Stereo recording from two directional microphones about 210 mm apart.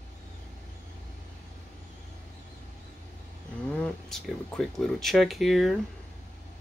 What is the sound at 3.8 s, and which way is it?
A man's voice, centre (ahead or behind).